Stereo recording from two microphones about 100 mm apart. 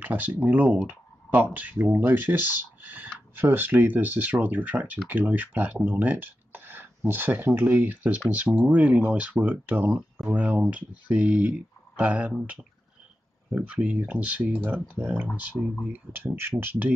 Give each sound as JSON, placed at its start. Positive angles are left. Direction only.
{"t": 0.0, "sound": "speech", "side_deg": -20}
{"t": 13.5, "sound": "speech", "side_deg": -15}